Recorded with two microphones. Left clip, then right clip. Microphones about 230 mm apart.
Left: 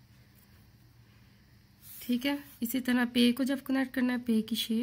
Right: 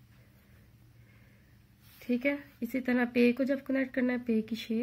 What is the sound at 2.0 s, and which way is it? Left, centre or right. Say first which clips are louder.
Speech: right 1 dB; left.